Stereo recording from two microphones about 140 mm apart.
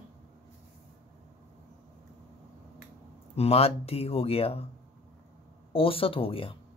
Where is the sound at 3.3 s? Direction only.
45° left (ahead or behind).